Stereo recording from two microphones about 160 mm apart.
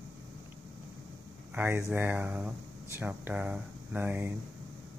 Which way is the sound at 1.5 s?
15° right (ahead or behind).